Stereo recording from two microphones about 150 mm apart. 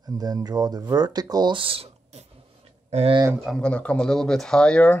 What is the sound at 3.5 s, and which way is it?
Speech, 5° left (ahead or behind).